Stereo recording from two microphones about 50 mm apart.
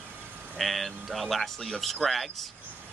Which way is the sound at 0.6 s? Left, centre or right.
Centre.